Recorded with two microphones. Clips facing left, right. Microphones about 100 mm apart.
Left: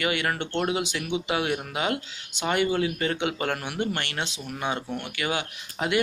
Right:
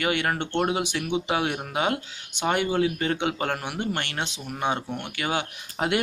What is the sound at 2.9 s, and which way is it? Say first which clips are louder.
Speech: right 1 dB; 35° right (ahead or behind).